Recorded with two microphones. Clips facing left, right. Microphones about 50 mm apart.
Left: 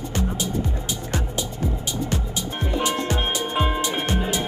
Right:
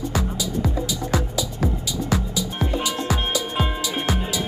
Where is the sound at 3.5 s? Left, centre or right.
Centre.